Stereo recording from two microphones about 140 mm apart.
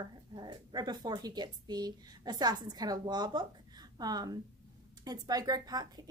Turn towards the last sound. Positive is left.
turn(degrees=-30)  # may be behind; listen again after turning